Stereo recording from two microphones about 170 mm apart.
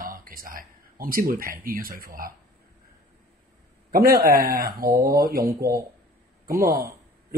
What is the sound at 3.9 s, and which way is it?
A man's voice, 60° right (ahead or behind).